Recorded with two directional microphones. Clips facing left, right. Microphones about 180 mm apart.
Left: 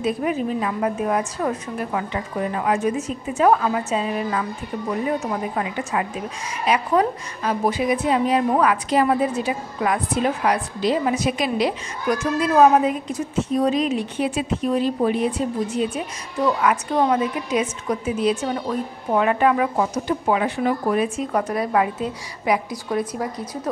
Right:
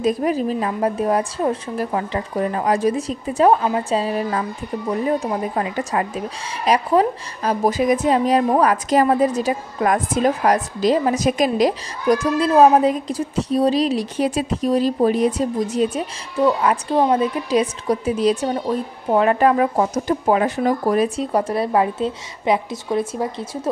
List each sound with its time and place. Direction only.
0.0 s a woman's voice: 35° right (ahead or behind)
16.3 s a woman's voice: 25° right (ahead or behind)